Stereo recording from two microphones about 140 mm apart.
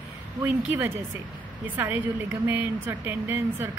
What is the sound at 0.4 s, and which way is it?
A woman's voice, 15° right (ahead or behind).